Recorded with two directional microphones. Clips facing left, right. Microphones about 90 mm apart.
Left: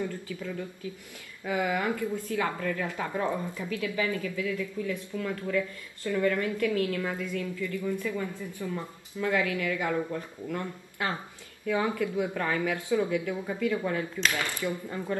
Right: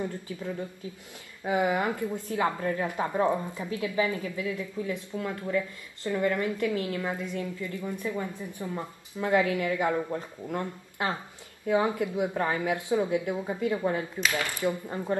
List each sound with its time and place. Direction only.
0.0 s a woman's voice: 25° right (ahead or behind)